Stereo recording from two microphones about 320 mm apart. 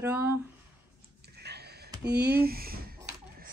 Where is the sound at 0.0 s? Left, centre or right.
Centre.